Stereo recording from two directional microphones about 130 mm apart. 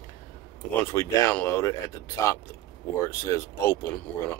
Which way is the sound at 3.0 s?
20° left (ahead or behind).